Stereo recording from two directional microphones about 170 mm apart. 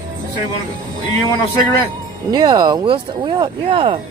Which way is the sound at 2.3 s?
25° right (ahead or behind).